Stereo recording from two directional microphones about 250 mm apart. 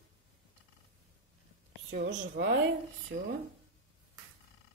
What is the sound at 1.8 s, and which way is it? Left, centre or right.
Speech, right.